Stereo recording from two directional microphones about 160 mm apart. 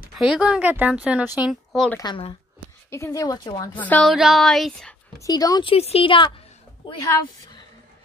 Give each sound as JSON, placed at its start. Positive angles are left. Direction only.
{"t": 0.1, "sound": "speech", "side_deg": 0}
{"t": 1.5, "sound": "speech", "side_deg": 0}
{"t": 2.0, "sound": "speech", "side_deg": 30}
{"t": 2.9, "sound": "speech", "side_deg": 20}
{"t": 3.7, "sound": "speech", "side_deg": 10}
{"t": 4.1, "sound": "speech", "side_deg": 0}
{"t": 5.2, "sound": "speech", "side_deg": 20}